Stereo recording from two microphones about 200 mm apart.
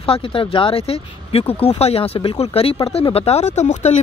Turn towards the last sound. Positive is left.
turn(degrees=35)  # may be behind; listen again after turning